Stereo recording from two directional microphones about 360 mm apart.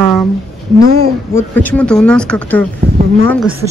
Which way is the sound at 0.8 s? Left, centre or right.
Right.